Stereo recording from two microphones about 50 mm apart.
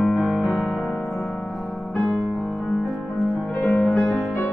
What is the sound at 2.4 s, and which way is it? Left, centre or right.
Music, left.